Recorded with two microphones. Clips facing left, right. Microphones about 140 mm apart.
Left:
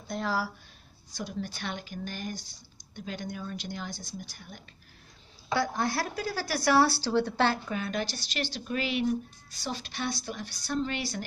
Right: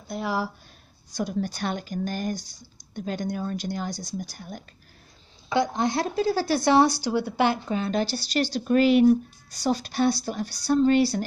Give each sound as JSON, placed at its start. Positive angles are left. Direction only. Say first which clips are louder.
{"t": 0.1, "sound": "speech", "louder": "right 2 dB", "side_deg": -10}
{"t": 1.1, "sound": "speech", "louder": "right 8 dB", "side_deg": -45}
{"t": 5.5, "sound": "speech", "louder": "right 5 dB", "side_deg": -20}